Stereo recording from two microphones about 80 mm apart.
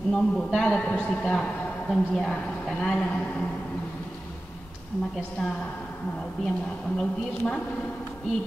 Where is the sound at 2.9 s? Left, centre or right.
Centre.